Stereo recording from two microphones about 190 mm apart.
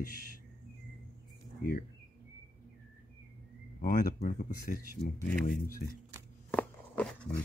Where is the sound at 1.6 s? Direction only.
50° left (ahead or behind).